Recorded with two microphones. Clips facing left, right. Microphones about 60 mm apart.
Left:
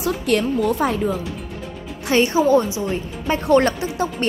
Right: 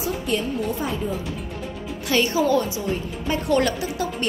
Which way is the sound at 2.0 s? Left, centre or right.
Left.